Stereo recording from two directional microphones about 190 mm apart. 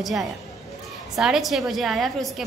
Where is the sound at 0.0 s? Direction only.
Centre (ahead or behind).